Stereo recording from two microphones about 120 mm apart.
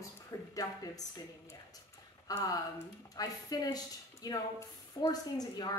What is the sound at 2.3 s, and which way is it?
A woman's voice, 30° left (ahead or behind).